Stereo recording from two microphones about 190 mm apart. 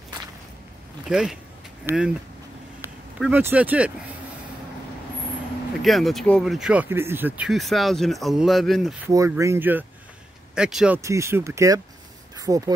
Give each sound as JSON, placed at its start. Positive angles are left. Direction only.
{"t": 1.0, "sound": "speech", "side_deg": 0}
{"t": 3.2, "sound": "speech", "side_deg": -10}
{"t": 5.8, "sound": "speech", "side_deg": 0}
{"t": 9.0, "sound": "speech", "side_deg": -15}
{"t": 11.0, "sound": "speech", "side_deg": -15}